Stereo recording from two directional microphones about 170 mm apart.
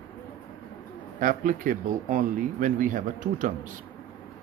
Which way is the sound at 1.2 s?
50° right (ahead or behind).